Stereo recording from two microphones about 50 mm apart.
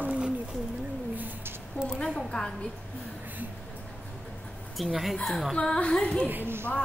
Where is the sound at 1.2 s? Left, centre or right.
Right.